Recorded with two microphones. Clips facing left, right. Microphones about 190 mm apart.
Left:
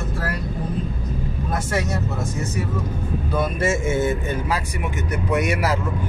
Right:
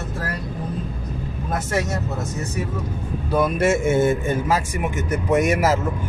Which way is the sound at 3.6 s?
60° right (ahead or behind).